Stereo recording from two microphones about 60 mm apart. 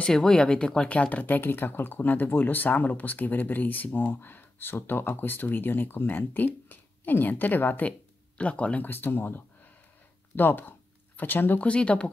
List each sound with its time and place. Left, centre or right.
0.1 s speech: centre; by 7.9 s left
8.4 s speech: left
11.6 s speech: centre